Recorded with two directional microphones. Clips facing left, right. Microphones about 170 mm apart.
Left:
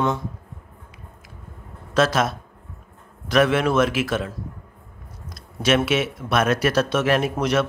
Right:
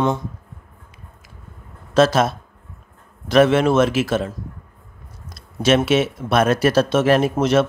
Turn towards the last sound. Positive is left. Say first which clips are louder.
# right 5 dB
turn(degrees=-25)  # may be behind; listen again after turning